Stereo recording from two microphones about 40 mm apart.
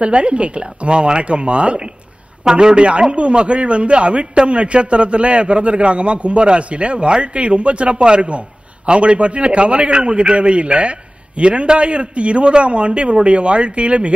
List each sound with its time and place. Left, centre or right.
0.0 s a man's voice: right